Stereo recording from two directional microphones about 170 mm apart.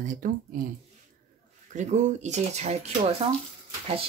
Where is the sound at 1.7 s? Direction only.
45° right (ahead or behind).